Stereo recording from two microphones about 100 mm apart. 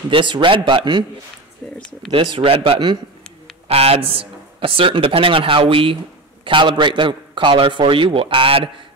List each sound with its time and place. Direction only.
0.1 s a man's voice: 55° right (ahead or behind)
1.6 s speech: 15° left (ahead or behind)
2.1 s speech: 70° right (ahead or behind)
3.6 s a man's voice: 80° right; by 8.6 s 65° right (ahead or behind)